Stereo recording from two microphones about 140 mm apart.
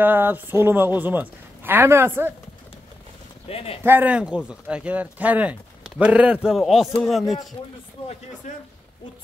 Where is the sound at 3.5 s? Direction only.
45° left (ahead or behind).